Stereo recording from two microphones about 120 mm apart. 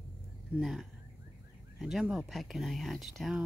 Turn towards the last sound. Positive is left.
turn(degrees=-5)  # may be behind; listen again after turning